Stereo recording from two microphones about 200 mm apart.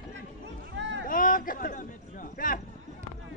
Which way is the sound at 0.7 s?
65° right (ahead or behind).